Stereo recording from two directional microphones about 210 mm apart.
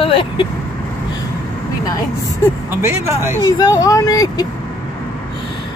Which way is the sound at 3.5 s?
15° left (ahead or behind).